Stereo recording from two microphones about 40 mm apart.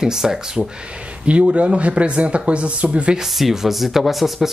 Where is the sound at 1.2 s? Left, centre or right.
Right.